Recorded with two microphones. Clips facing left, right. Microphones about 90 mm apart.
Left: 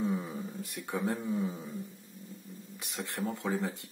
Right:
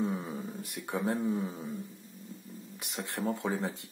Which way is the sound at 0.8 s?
20° right (ahead or behind).